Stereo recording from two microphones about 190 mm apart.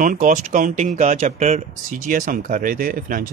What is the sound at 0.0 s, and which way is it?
Speech, 45° right (ahead or behind).